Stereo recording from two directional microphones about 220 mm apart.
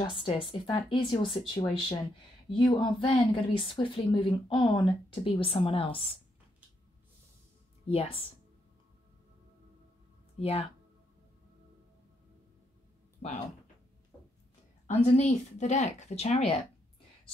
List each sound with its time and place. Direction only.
0.0 s a woman's voice: 25° left (ahead or behind)
7.9 s a woman's voice: 25° left (ahead or behind)
15.0 s speech: 30° left (ahead or behind)